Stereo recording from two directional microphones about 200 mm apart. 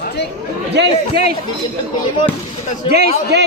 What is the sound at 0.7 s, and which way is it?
Speech, 55° right (ahead or behind).